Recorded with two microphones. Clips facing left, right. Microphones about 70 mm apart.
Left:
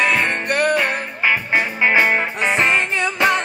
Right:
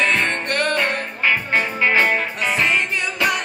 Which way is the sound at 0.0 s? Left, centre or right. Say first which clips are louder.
Left 1 dB; centre.